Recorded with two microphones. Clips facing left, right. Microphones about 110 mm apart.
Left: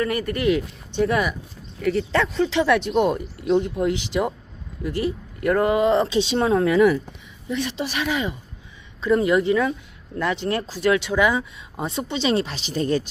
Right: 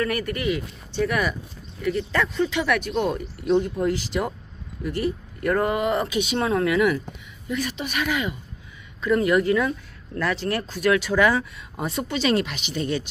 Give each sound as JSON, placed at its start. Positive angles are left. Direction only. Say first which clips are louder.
{"t": 0.0, "sound": "speech", "louder": "left 3 dB", "side_deg": 20}
{"t": 2.3, "sound": "speech", "louder": "left 5 dB", "side_deg": 30}